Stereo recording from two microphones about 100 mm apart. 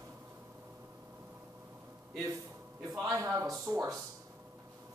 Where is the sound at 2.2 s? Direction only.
35° right (ahead or behind).